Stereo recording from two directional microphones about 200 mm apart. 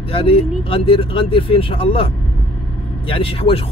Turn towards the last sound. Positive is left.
turn(degrees=30)  # may be behind; listen again after turning